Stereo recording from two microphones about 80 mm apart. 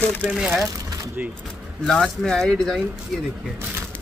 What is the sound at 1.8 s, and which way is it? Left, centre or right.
Speech, centre.